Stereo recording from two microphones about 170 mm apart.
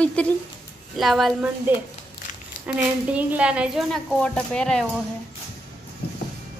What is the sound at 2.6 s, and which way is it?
A woman's voice, 10° right (ahead or behind).